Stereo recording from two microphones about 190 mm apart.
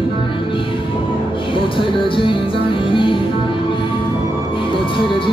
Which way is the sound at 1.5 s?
25° left (ahead or behind).